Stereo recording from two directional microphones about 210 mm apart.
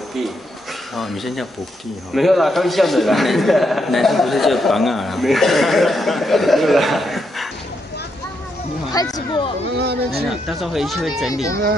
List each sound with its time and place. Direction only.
0.9 s a man's voice: centre (ahead or behind)
8.9 s speech: 15° left (ahead or behind)
9.8 s speech: 50° right (ahead or behind)
10.2 s a man's voice: centre (ahead or behind)